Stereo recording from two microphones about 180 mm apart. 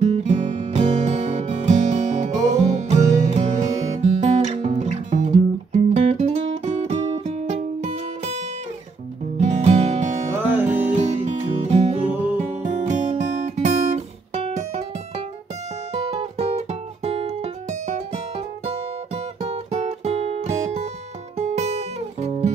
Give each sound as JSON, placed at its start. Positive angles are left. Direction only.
{"t": 0.0, "sound": "music", "side_deg": -40}
{"t": 10.4, "sound": "music", "side_deg": -10}
{"t": 11.0, "sound": "music", "side_deg": -40}
{"t": 12.4, "sound": "guitar", "side_deg": -40}
{"t": 15.9, "sound": "music", "side_deg": -35}